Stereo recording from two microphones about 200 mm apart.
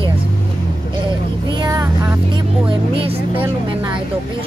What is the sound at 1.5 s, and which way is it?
Speech, 20° right (ahead or behind).